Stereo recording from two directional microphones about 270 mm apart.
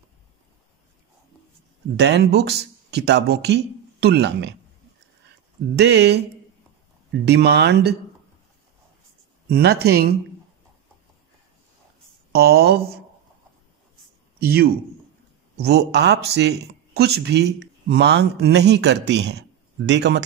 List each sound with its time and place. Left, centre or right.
2.0 s speech: right
5.8 s speech: right
7.2 s speech: right
9.5 s speech: right
12.3 s speech: right
14.4 s a man's voice: right